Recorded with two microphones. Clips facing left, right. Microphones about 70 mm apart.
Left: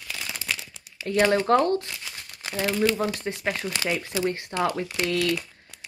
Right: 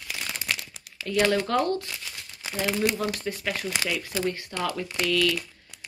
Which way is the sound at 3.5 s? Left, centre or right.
Left.